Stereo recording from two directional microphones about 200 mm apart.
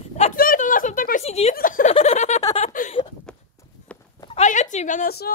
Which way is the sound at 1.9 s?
30° left (ahead or behind).